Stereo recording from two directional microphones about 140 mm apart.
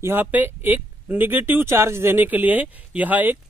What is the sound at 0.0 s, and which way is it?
Speech, 15° right (ahead or behind).